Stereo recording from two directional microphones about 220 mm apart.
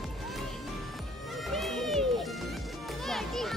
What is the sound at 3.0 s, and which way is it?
Children playing, centre (ahead or behind).